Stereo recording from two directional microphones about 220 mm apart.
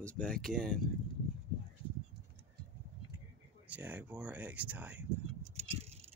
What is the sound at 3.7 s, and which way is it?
Speech, 10° right (ahead or behind).